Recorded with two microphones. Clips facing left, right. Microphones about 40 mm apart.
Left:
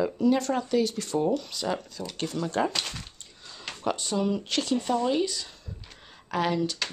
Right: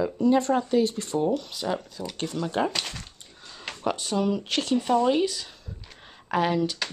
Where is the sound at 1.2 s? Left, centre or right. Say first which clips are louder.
Right 1 dB; centre.